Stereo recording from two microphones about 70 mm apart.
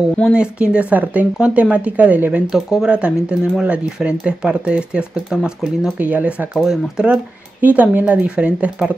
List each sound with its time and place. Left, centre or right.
0.3 s speech: centre
2.5 s speech: centre
5.9 s speech: right
7.6 s speech: right